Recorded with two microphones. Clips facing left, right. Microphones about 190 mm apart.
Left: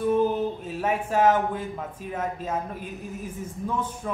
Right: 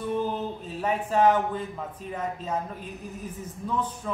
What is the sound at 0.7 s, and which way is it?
Speech, 5° left (ahead or behind).